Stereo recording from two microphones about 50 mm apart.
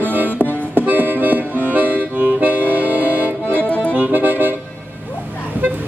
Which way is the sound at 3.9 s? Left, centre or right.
Right.